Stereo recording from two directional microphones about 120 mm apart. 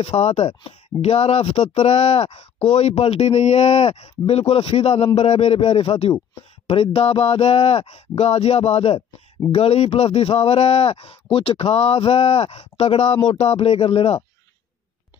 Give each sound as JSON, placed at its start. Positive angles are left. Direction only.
{"t": 0.0, "sound": "speech", "side_deg": 60}